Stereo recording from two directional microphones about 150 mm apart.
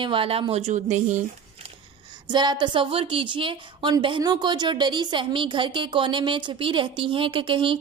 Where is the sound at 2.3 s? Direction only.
30° right (ahead or behind).